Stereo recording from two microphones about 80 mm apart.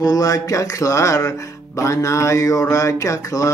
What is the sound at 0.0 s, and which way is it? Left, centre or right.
Mantra, left.